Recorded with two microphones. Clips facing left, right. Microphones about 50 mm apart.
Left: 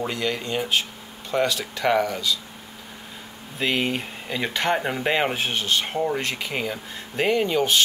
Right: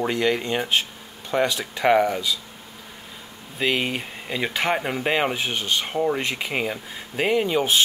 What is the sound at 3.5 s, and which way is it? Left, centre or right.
Speech, centre.